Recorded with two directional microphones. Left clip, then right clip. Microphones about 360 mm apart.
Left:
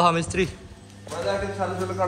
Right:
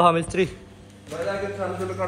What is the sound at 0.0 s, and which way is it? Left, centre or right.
Speech, centre.